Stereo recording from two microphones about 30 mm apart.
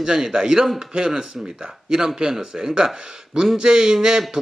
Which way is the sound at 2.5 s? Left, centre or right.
Right.